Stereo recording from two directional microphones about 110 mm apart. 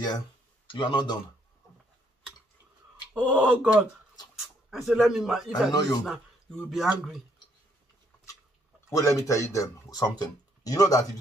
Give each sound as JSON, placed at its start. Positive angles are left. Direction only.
{"t": 0.7, "sound": "speech", "side_deg": 45}
{"t": 3.2, "sound": "speech", "side_deg": -10}
{"t": 5.7, "sound": "speech", "side_deg": 35}
{"t": 6.0, "sound": "speech", "side_deg": 10}
{"t": 6.7, "sound": "speech", "side_deg": 0}
{"t": 8.9, "sound": "speech", "side_deg": 30}